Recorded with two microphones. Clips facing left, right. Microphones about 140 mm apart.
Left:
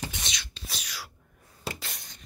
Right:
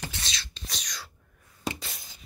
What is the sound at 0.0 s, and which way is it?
Beatboxing, 20° left (ahead or behind).